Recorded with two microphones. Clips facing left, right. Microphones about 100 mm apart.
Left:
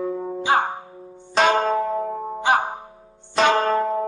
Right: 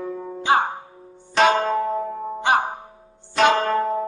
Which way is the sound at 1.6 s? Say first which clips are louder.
Left 1 dB; 15° left (ahead or behind).